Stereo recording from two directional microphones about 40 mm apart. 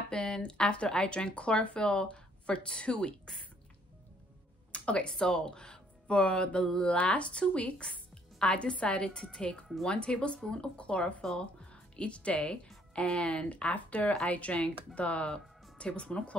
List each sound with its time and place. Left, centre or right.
0.1 s a sound: left
0.5 s speech: left
4.7 s speech: left
7.0 s speech: left
13.5 s speech: left